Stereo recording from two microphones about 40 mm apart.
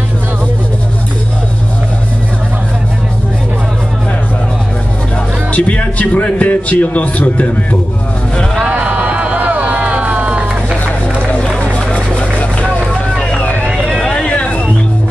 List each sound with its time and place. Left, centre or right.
5.5 s a man's voice: left
8.6 s music: right
9.2 s vehicle: right
11.4 s run: left
13.2 s vehicle: left
14.0 s a sound: left
14.3 s music: left